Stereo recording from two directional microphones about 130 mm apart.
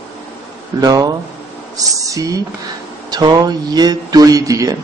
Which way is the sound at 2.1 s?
25° right (ahead or behind).